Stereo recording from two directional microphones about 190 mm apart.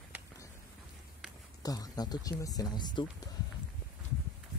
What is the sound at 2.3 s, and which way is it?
Speech, 20° left (ahead or behind).